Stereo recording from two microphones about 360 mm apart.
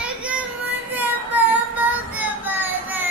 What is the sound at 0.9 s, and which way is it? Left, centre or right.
Child singing, centre.